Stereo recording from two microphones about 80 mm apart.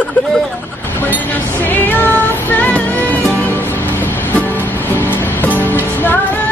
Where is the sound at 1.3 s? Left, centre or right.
Left.